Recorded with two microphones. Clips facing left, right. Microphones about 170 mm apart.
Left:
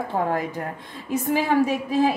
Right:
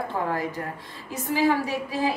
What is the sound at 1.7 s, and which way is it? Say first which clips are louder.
Speech: left 6 dB; 20° left (ahead or behind).